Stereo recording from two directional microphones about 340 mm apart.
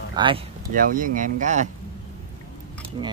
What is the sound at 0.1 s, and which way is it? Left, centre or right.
Speech, centre.